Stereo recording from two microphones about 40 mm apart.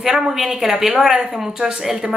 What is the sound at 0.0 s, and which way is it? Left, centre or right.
A woman's voice, centre.